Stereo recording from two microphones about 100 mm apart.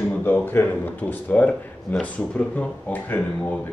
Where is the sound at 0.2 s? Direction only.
20° left (ahead or behind).